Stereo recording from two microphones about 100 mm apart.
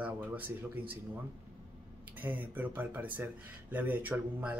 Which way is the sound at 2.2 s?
15° right (ahead or behind).